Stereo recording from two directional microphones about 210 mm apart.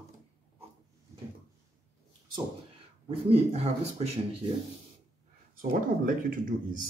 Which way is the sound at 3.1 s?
30° right (ahead or behind).